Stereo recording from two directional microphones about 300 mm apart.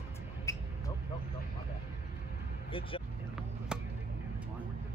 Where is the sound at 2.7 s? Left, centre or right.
Centre.